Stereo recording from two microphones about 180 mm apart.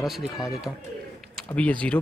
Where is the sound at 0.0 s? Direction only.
Centre (ahead or behind).